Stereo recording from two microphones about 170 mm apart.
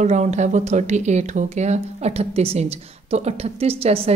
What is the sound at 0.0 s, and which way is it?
Speech, 45° right (ahead or behind).